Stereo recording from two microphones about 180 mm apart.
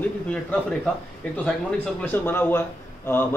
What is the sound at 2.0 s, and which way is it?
Speech, 10° left (ahead or behind).